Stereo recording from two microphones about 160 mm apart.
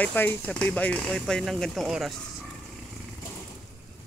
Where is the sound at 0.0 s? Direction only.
10° left (ahead or behind).